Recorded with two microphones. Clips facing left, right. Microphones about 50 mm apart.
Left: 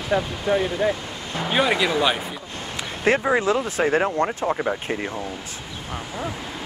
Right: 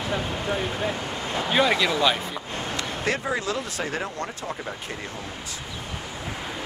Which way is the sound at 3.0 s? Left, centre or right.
Left.